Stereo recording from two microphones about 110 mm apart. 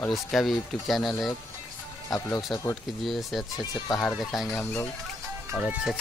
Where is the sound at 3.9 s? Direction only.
Centre (ahead or behind).